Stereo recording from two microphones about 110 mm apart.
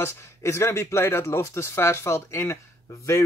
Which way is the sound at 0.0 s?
25° left (ahead or behind).